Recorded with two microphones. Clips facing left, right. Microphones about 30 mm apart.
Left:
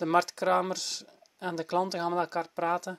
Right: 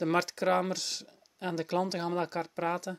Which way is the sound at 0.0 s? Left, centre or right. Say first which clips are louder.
Left 2 dB; centre.